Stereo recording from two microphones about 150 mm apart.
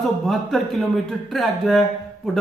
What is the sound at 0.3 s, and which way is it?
Speech, centre (ahead or behind).